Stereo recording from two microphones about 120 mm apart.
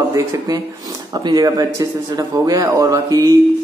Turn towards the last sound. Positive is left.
turn(degrees=-30)  # may be behind; listen again after turning